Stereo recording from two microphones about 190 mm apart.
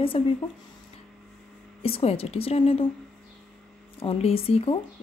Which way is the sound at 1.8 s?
30° left (ahead or behind).